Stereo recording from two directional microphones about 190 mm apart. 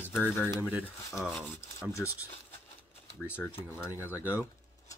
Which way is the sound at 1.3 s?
Centre (ahead or behind).